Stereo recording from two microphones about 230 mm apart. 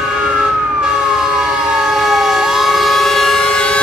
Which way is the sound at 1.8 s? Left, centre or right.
Centre.